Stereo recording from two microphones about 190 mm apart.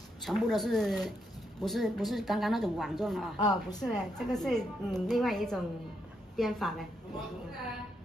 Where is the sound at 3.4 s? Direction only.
20° left (ahead or behind).